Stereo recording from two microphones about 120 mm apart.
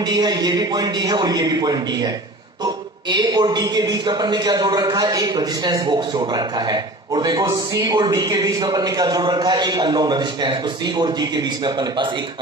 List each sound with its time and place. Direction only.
0.0 s a man's voice: 35° right (ahead or behind)